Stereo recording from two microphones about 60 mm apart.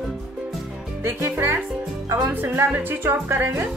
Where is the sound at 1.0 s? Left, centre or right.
Right.